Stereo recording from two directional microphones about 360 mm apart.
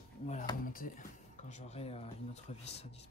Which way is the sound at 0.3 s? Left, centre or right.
Centre.